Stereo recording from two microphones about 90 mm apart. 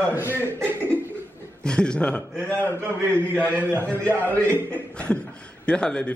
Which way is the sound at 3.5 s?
20° right (ahead or behind).